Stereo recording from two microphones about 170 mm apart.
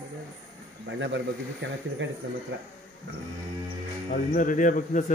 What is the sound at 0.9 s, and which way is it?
Speech, 90° right.